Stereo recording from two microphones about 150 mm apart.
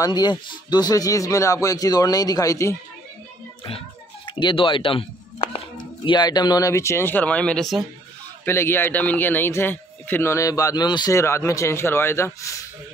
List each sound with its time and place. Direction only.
0.0 s speech: 30° left (ahead or behind)
4.3 s speech: 30° left (ahead or behind)
6.0 s speech: 30° left (ahead or behind); by 7.8 s centre (ahead or behind)
8.5 s speech: 15° left (ahead or behind)